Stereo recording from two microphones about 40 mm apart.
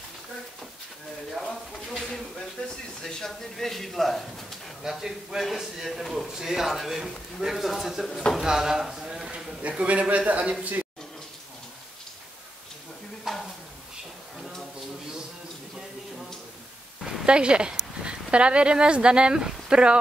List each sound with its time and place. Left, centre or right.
3.1 s a man's voice: centre
4.8 s a man's voice: centre
8.4 s a sound: centre
9.6 s a man's voice: right
13.3 s a sound: centre
17.3 s speech: right